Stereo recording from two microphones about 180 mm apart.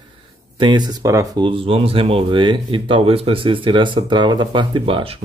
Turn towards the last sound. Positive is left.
turn(degrees=-30)  # may be behind; listen again after turning